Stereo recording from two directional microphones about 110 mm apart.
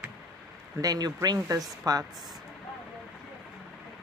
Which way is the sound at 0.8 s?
35° right (ahead or behind).